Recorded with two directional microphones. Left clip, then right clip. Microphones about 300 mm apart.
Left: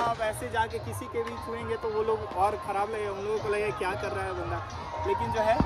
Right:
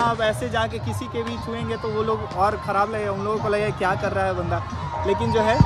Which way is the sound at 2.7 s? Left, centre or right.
Centre.